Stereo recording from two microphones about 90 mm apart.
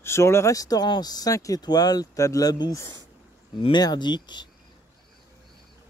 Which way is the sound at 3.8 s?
50° left (ahead or behind).